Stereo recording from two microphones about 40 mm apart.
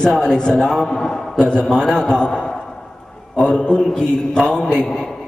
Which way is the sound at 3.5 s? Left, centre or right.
Centre.